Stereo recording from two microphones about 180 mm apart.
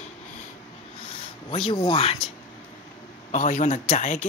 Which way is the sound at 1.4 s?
30° left (ahead or behind).